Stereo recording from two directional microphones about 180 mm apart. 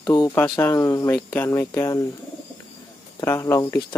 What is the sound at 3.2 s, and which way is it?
Speech, 15° left (ahead or behind).